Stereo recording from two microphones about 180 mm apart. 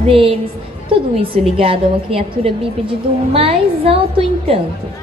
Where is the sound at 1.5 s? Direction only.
30° right (ahead or behind).